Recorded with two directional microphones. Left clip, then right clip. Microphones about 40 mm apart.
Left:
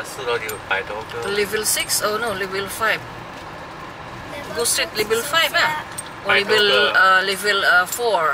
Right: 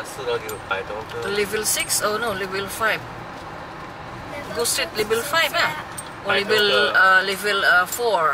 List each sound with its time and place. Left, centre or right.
1.2 s a man's voice: centre
4.6 s a man's voice: centre